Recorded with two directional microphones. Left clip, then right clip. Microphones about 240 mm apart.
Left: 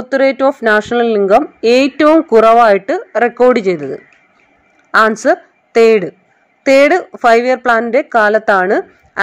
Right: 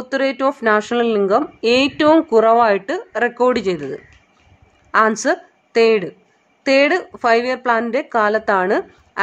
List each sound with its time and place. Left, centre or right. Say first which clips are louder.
0.0 s a woman's voice: left 7 dB; centre